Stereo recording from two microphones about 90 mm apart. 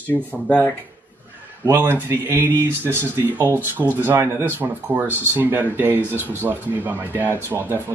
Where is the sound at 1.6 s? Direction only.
25° right (ahead or behind).